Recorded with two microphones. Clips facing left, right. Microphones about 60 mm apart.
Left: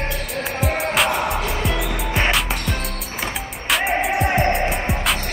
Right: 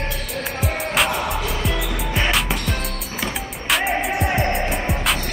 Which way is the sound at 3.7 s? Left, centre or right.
Centre.